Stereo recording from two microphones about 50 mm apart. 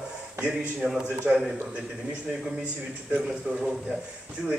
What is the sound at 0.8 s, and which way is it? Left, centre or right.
Speech, centre.